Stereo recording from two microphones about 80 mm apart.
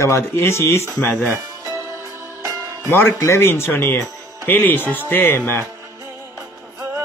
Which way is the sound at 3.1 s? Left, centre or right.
Left.